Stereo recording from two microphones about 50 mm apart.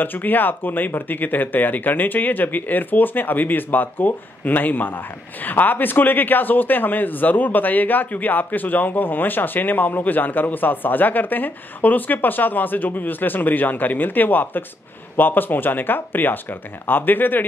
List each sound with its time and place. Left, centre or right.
0.0 s speech: left